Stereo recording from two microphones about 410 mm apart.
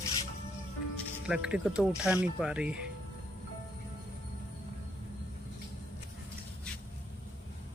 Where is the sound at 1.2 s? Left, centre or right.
Centre.